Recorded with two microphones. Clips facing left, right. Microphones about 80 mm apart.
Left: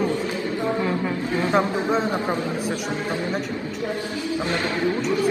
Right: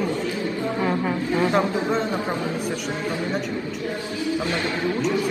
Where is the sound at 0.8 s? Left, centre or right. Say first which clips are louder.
Right 1 dB; right.